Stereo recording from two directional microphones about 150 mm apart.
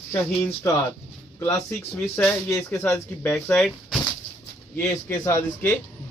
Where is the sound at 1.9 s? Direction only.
10° left (ahead or behind).